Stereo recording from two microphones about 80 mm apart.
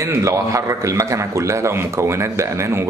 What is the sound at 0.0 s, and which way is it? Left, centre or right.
Speech, right.